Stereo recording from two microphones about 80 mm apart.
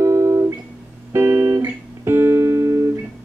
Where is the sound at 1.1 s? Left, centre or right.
Right.